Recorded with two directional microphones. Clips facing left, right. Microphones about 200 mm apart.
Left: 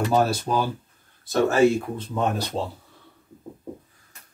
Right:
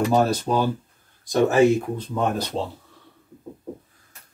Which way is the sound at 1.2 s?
15° right (ahead or behind).